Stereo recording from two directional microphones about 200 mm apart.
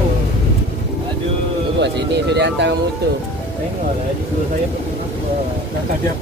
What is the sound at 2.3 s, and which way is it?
Speech, 60° right (ahead or behind).